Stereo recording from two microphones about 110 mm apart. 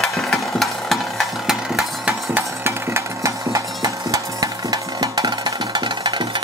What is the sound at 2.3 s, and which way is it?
Music, 20° right (ahead or behind).